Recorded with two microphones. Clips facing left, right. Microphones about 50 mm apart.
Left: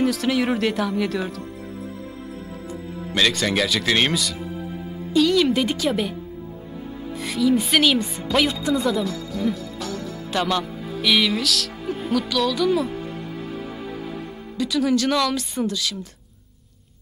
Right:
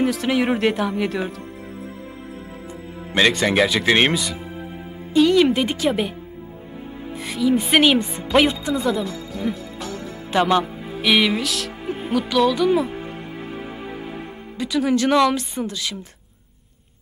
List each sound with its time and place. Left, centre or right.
0.0 s speech: centre
3.0 s music: right
3.3 s speech: centre
3.8 s speech: right
4.1 s music: centre
5.3 s speech: centre
7.2 s speech: centre
10.5 s music: centre
15.7 s speech: centre